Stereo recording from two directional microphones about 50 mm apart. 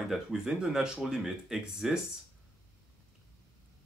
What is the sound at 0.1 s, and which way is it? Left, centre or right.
Speech, centre.